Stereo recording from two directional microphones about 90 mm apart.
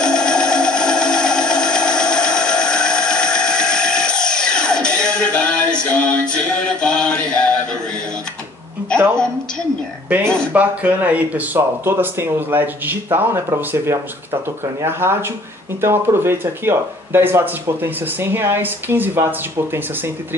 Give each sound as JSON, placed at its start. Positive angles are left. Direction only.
{"t": 0.0, "sound": "music", "side_deg": 10}
{"t": 8.8, "sound": "a sound", "side_deg": 10}
{"t": 10.2, "sound": "speech", "side_deg": 10}
{"t": 10.5, "sound": "speech", "side_deg": -20}